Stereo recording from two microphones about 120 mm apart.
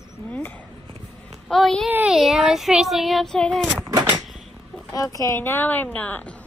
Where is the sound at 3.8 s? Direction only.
35° right (ahead or behind).